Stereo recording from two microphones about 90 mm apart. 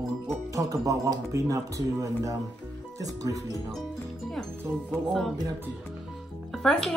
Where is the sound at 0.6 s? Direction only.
40° right (ahead or behind).